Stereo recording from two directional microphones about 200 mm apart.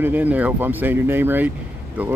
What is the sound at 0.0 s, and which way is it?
Speech, 10° right (ahead or behind).